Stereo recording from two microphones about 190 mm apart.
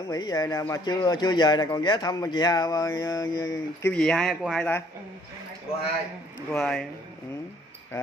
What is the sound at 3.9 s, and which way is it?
Speech, 5° left (ahead or behind).